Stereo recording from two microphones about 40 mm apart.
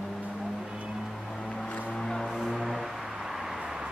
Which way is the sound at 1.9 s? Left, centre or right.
Centre.